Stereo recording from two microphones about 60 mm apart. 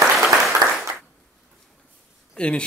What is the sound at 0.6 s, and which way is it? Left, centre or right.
Applause, right.